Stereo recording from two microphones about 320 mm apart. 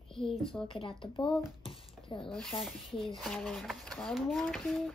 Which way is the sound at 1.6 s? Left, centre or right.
Centre.